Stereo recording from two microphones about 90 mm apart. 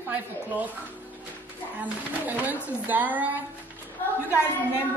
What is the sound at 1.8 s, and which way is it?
A woman's voice, 20° right (ahead or behind).